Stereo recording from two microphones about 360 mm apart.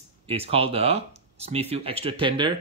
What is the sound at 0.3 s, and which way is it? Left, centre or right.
Speech, centre.